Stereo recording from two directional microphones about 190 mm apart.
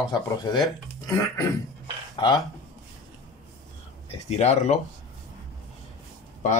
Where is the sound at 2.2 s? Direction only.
25° left (ahead or behind).